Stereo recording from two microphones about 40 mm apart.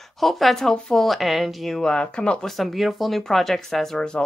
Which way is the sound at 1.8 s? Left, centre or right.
Left.